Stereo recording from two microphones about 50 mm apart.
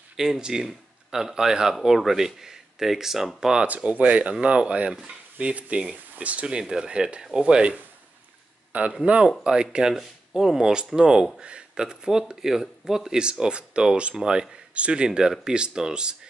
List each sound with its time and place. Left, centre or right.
0.1 s speech: centre
3.6 s speech: right
6.6 s speech: centre
9.0 s speech: right